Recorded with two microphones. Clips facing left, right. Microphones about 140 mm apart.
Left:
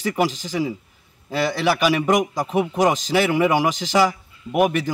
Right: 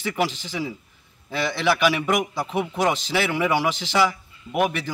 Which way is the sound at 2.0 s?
40° left (ahead or behind).